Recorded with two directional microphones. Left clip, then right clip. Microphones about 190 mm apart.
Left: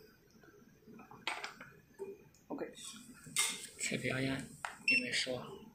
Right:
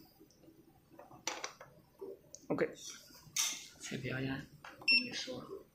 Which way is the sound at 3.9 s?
10° left (ahead or behind).